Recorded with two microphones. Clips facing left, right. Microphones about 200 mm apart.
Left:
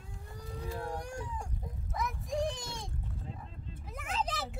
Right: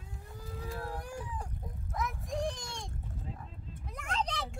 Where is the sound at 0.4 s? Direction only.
Centre (ahead or behind).